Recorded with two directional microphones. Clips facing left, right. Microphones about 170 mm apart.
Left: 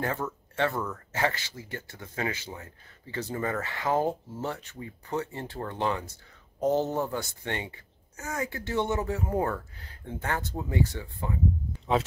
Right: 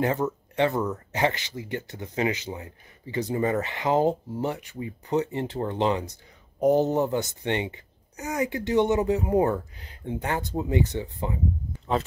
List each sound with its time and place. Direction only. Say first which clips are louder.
0.0 s speech: right 6 dB; 20° right (ahead or behind)